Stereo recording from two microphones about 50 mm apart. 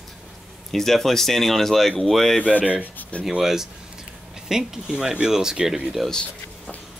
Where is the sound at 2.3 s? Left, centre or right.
Left.